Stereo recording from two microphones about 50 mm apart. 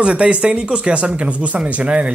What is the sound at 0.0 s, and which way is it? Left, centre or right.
Speech, right.